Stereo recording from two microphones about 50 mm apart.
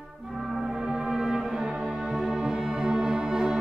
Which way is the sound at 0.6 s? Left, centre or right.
Centre.